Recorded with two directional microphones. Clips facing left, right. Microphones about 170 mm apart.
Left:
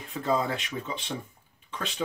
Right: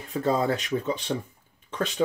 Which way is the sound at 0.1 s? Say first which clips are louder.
Right 3 dB; 40° right (ahead or behind).